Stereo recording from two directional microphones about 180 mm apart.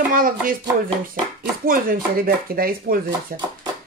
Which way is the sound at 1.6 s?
55° right (ahead or behind).